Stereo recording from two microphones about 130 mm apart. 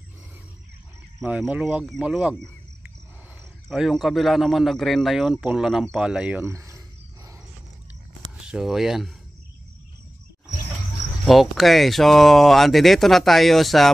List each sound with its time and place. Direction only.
1.5 s speech: 10° right (ahead or behind)
3.6 s speech: centre (ahead or behind)
6.4 s speech: 20° right (ahead or behind)
8.5 s speech: 5° right (ahead or behind)
11.2 s speech: centre (ahead or behind)